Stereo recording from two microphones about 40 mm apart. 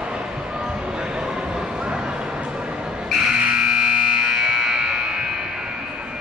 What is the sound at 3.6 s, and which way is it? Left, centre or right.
Music, right.